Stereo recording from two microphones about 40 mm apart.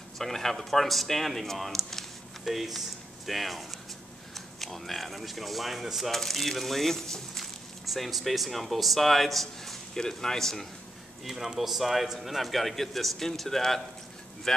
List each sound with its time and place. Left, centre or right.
0.2 s speech: centre
2.4 s a man's voice: centre
11.2 s a man's voice: centre